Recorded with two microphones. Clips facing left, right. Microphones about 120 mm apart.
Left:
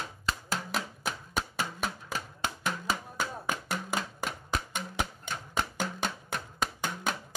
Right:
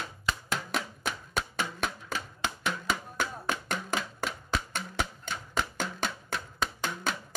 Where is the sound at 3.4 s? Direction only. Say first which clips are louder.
Right 1 dB; 10° left (ahead or behind).